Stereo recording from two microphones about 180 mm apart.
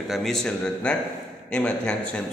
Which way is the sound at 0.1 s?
Centre (ahead or behind).